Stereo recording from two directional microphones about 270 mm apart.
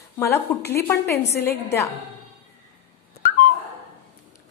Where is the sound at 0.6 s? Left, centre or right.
Centre.